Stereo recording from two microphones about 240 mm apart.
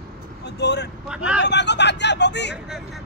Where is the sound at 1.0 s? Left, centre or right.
Centre.